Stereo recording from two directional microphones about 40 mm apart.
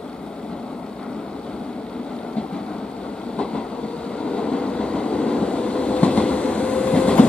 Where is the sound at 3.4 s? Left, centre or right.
Left.